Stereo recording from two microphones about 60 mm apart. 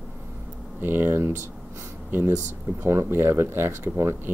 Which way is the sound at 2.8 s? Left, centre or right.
Right.